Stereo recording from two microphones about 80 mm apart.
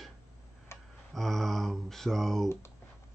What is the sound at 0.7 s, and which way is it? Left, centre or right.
Tick-tock, left.